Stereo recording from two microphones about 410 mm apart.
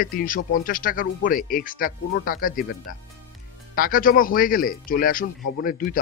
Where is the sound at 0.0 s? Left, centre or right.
Left.